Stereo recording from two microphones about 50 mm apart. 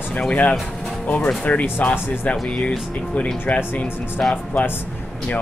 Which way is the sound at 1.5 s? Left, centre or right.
Left.